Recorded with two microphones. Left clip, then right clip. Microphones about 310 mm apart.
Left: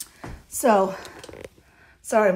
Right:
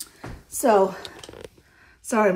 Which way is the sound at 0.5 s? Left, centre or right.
Left.